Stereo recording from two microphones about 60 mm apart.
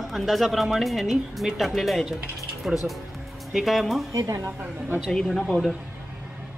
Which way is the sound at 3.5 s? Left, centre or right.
Centre.